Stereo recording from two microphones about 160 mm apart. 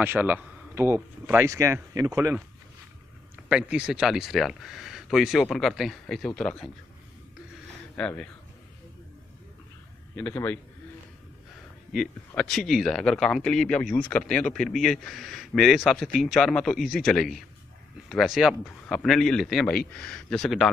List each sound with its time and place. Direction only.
0.0 s a man's voice: 15° right (ahead or behind)
3.4 s speech: 5° right (ahead or behind)
7.9 s speech: 10° left (ahead or behind)
10.1 s a man's voice: 10° left (ahead or behind)
11.9 s speech: centre (ahead or behind)